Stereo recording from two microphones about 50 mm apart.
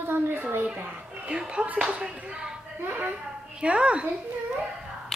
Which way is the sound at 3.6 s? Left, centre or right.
Right.